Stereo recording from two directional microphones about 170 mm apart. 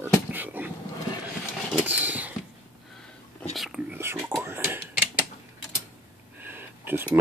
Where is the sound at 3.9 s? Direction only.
15° right (ahead or behind).